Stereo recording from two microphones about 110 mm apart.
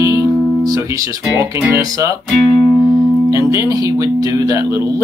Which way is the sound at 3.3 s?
30° right (ahead or behind).